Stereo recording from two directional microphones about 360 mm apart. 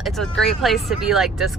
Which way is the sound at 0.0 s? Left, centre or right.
Centre.